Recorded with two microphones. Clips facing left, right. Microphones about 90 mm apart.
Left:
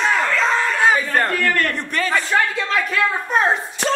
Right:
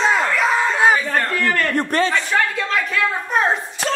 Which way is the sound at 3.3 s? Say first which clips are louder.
Even; centre (ahead or behind).